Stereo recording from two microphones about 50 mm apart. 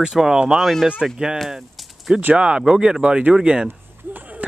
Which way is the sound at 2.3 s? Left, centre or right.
Centre.